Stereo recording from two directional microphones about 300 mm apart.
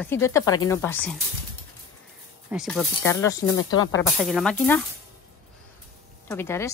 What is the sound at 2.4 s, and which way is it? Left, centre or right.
A woman's voice, centre.